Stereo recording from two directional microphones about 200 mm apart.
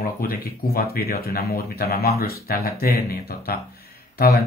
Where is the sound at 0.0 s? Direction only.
45° left (ahead or behind).